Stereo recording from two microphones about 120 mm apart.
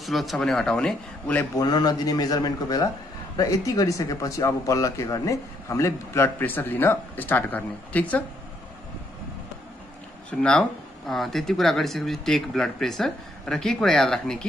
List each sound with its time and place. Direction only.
0.0 s speech: centre (ahead or behind)
1.6 s a man's voice: 35° left (ahead or behind); by 8.2 s 15° left (ahead or behind)
11.1 s speech: centre (ahead or behind)